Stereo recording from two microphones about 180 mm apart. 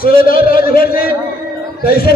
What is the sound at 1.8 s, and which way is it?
Speech, 60° left (ahead or behind).